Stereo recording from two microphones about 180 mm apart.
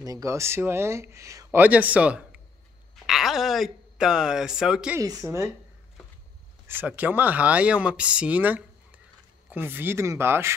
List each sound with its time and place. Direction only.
0.0 s speech: 20° right (ahead or behind); by 4.9 s 5° right (ahead or behind)
4.9 s speech: 15° right (ahead or behind)
6.7 s speech: 10° right (ahead or behind)